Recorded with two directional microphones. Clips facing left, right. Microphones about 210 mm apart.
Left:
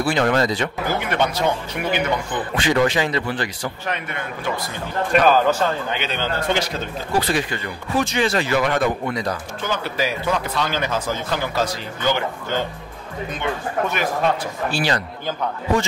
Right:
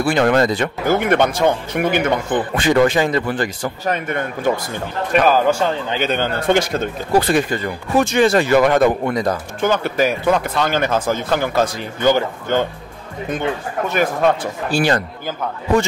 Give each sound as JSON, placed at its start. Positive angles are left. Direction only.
{"t": 0.0, "sound": "a man's voice", "side_deg": -55}
{"t": 5.2, "sound": "speech", "side_deg": -10}
{"t": 5.9, "sound": "a man's voice", "side_deg": -50}
{"t": 13.9, "sound": "a man's voice", "side_deg": -50}